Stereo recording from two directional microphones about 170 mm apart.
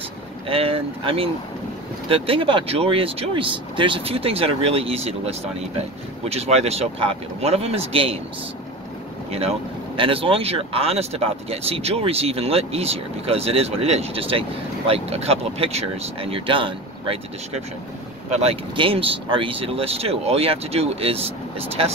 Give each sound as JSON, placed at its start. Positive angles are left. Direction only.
{"t": 0.5, "sound": "speech", "side_deg": -35}
{"t": 9.3, "sound": "speech", "side_deg": -35}